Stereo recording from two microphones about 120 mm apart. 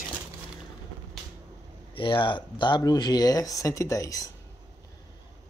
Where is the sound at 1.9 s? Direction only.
45° left (ahead or behind); by 4.2 s 30° left (ahead or behind).